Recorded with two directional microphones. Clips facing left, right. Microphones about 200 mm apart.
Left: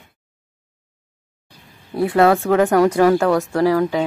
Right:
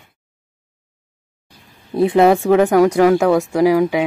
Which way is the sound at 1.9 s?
20° right (ahead or behind).